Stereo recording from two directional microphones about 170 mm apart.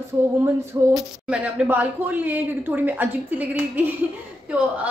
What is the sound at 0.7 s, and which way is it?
A woman's voice, 15° right (ahead or behind).